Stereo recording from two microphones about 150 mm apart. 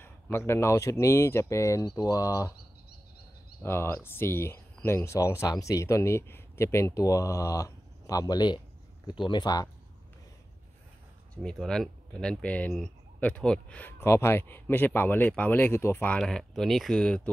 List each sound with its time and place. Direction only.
0.0 s speech: 15° left (ahead or behind)
3.6 s speech: 15° left (ahead or behind)
11.3 s speech: 5° left (ahead or behind)